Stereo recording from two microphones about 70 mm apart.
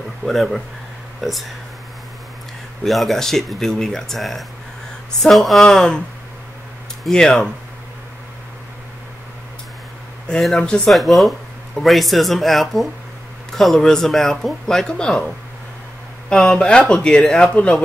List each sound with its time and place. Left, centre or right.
0.2 s speech: centre
2.8 s speech: centre
7.1 s speech: centre
10.4 s speech: centre
10.9 s speech: centre
16.3 s speech: centre